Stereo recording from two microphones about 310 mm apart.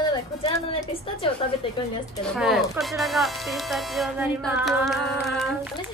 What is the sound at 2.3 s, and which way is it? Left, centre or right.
Speech, centre.